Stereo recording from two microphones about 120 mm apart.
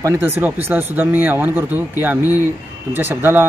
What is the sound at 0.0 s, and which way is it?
Speech, 20° right (ahead or behind).